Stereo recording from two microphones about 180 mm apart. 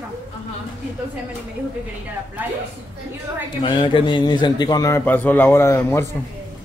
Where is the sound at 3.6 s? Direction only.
25° left (ahead or behind).